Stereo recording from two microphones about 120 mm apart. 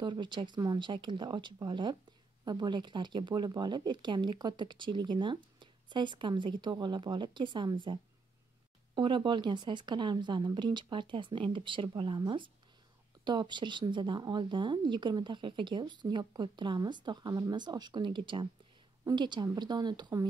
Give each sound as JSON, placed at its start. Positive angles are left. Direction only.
{"t": 0.0, "sound": "speech", "side_deg": -40}